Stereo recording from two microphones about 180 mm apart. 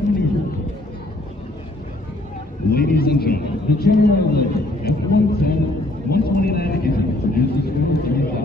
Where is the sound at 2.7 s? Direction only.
60° left (ahead or behind).